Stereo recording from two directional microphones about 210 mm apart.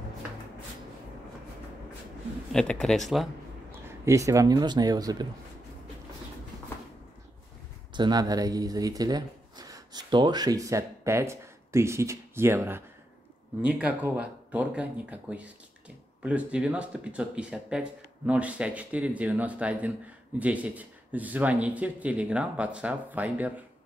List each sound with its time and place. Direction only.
2.5 s speech: 5° left (ahead or behind)
3.8 s speech: 15° right (ahead or behind)
7.9 s speech: 20° right (ahead or behind)